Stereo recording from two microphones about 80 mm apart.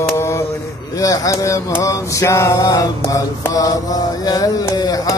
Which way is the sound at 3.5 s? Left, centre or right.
Left.